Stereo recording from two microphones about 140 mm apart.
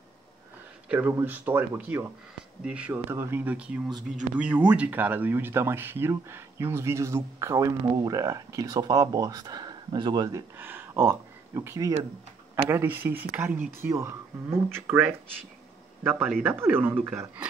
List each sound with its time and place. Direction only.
0.8 s speech: 10° right (ahead or behind)
16.4 s speech: 15° right (ahead or behind)